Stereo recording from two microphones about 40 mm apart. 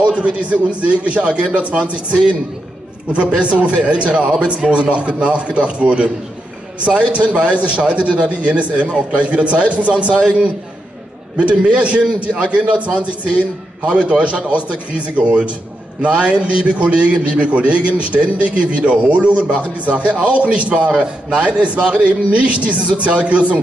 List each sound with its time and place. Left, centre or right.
0.0 s a man's voice: right
3.3 s a man's voice: right